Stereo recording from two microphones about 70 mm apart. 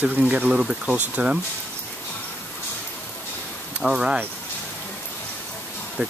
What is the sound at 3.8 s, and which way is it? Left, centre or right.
Speech, centre.